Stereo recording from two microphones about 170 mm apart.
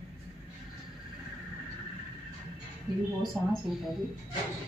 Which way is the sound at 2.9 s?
25° right (ahead or behind).